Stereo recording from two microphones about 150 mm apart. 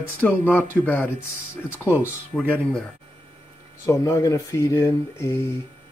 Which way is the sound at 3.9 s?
20° left (ahead or behind).